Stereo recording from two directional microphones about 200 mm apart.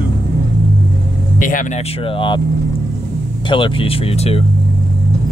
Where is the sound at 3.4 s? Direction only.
25° left (ahead or behind).